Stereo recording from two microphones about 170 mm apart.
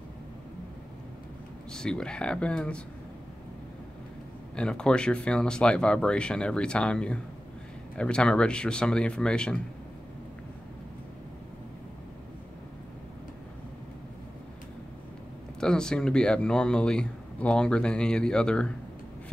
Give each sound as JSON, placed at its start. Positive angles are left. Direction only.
{"t": 1.7, "sound": "speech", "side_deg": 5}
{"t": 4.6, "sound": "speech", "side_deg": 5}
{"t": 15.6, "sound": "speech", "side_deg": 5}